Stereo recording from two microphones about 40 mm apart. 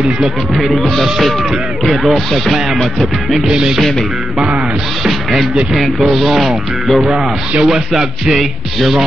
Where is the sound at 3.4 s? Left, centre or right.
Centre.